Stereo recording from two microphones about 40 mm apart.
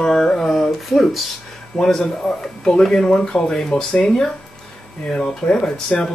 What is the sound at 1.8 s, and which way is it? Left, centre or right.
Speech, centre.